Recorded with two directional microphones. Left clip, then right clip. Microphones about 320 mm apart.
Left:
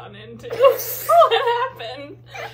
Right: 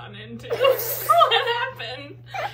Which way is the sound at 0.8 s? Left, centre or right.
Centre.